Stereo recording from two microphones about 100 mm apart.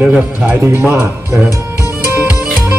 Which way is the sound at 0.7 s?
25° right (ahead or behind).